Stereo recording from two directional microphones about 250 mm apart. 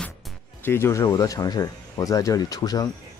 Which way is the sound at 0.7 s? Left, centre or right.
Centre.